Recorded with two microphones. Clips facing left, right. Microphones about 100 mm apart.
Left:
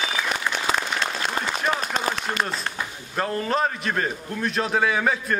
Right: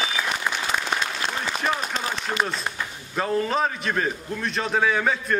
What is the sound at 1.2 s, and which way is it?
Applause, 50° left (ahead or behind).